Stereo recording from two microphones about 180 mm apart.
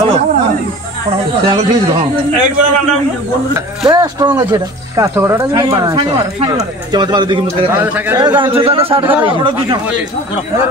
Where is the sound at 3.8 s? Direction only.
25° right (ahead or behind).